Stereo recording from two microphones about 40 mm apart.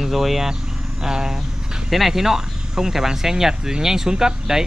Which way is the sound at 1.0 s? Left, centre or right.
Centre.